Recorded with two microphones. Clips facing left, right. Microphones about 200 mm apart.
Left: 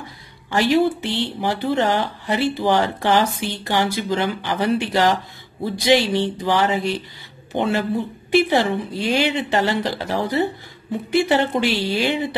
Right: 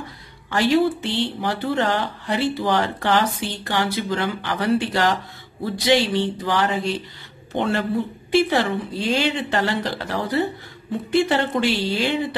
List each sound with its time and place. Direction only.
0.5 s speech: 15° left (ahead or behind)
7.5 s speech: 10° left (ahead or behind)